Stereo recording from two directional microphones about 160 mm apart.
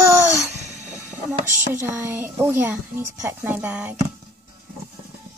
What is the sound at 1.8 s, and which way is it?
A woman's voice, 15° right (ahead or behind).